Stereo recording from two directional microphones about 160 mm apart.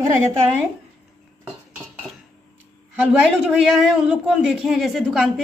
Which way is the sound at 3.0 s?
5° right (ahead or behind).